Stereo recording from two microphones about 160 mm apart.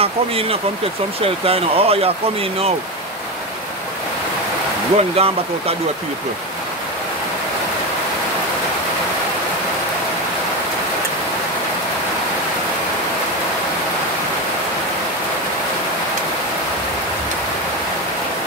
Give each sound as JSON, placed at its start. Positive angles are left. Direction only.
{"t": 0.0, "sound": "speech", "side_deg": -35}
{"t": 4.9, "sound": "speech", "side_deg": -40}